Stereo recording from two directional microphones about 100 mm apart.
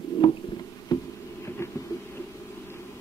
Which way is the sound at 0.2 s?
60° left (ahead or behind).